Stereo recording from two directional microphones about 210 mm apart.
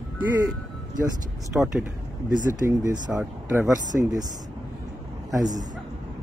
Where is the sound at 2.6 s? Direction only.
15° right (ahead or behind).